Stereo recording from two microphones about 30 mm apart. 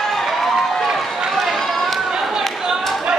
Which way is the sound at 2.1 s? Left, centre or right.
Centre.